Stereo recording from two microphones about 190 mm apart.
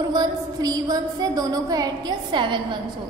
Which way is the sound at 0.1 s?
20° right (ahead or behind).